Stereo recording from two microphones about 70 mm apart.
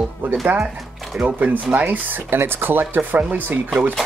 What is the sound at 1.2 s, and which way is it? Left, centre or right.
Speech, right.